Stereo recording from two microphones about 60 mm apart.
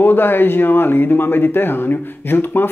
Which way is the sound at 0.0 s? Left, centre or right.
Left.